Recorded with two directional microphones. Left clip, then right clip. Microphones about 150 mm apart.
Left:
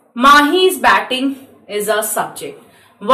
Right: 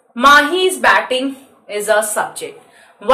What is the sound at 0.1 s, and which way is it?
A woman's voice, 30° right (ahead or behind).